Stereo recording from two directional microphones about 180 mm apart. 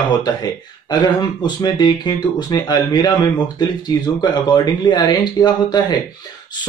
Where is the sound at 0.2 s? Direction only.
25° left (ahead or behind).